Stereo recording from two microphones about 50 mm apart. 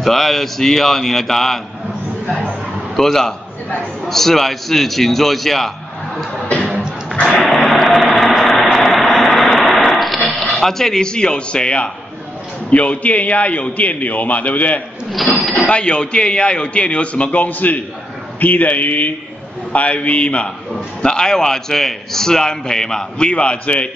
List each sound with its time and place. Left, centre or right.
0.0 s a man's voice: centre
3.0 s a man's voice: centre
7.4 s vehicle: centre
9.8 s a man's voice: centre; by 14.8 s left
15.2 s a sound: centre
15.5 s a man's voice: left